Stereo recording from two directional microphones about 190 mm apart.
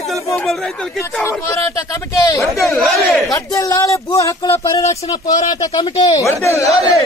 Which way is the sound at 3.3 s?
15° left (ahead or behind).